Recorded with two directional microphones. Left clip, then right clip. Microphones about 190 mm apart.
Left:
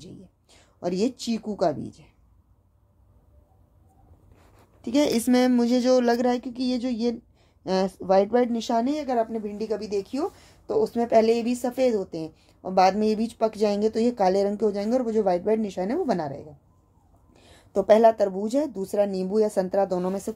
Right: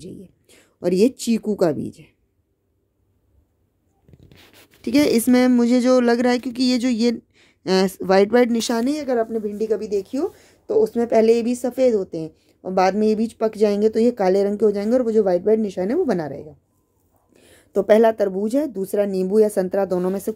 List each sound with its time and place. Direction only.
0.0 s speech: 25° right (ahead or behind)
4.8 s a woman's voice: 15° right (ahead or behind)